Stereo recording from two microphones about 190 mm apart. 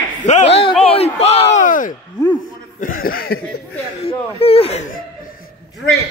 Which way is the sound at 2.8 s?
50° left (ahead or behind).